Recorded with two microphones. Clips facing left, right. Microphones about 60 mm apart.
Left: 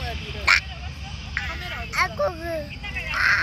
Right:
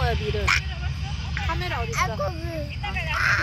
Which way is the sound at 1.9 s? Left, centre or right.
Left.